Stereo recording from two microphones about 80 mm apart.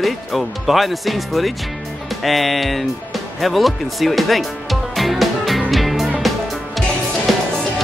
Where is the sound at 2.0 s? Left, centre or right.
Centre.